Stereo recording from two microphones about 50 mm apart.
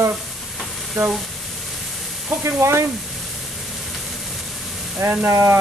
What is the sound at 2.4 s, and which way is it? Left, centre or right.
Speech, right.